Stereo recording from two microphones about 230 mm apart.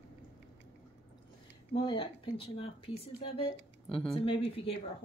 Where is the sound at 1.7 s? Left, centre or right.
Left.